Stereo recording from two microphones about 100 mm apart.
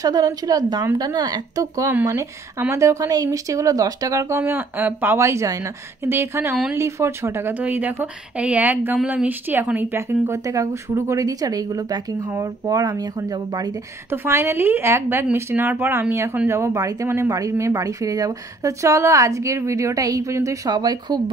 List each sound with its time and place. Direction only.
0.0 s a woman's voice: 40° right (ahead or behind)
14.1 s a woman's voice: 25° right (ahead or behind)
20.7 s speech: 45° right (ahead or behind)